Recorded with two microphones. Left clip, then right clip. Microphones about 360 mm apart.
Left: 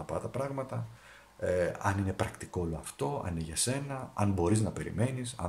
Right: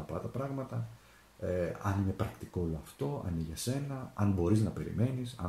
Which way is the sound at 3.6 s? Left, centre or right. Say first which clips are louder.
Left 6 dB; left.